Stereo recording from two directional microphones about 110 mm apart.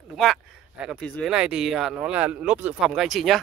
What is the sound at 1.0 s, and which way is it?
Speech, 15° left (ahead or behind).